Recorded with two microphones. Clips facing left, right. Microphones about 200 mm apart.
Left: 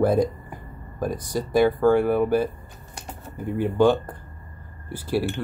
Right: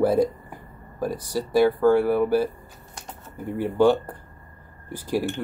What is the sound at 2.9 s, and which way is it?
Typing, 10° left (ahead or behind).